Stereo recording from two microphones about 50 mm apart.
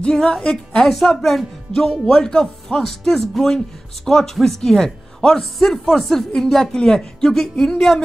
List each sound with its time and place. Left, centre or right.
0.0 s a woman's voice: centre
0.8 s a woman's voice: centre